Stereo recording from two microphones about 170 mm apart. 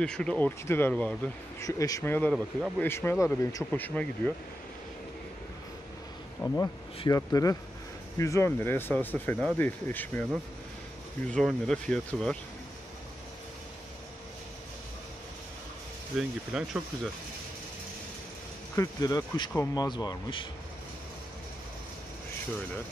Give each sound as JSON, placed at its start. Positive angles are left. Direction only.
{"t": 0.0, "sound": "speech", "side_deg": 5}
{"t": 1.7, "sound": "speech", "side_deg": 20}
{"t": 6.4, "sound": "speech", "side_deg": 15}
{"t": 11.2, "sound": "speech", "side_deg": 5}
{"t": 16.1, "sound": "speech", "side_deg": 0}
{"t": 18.8, "sound": "speech", "side_deg": 20}